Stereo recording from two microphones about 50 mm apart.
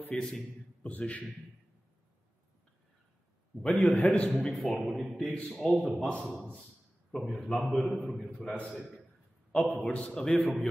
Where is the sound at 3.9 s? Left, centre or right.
Left.